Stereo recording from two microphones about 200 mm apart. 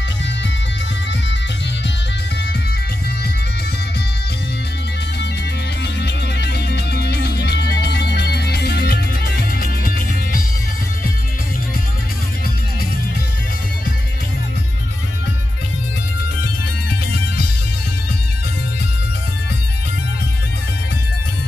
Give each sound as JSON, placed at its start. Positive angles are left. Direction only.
{"t": 5.9, "sound": "music", "side_deg": 55}